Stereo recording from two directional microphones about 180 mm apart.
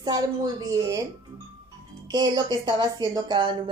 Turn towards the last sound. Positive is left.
turn(degrees=-25)  # may be behind; listen again after turning